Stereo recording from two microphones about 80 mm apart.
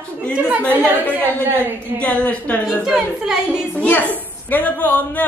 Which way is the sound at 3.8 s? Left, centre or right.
Centre.